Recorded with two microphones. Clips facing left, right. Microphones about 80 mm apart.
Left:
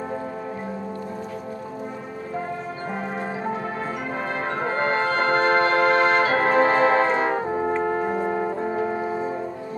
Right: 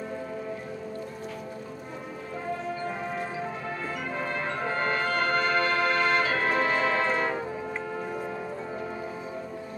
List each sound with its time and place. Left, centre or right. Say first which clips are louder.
4.2 s brass instrument: left 4 dB; left
7.3 s brass instrument: left 9 dB; left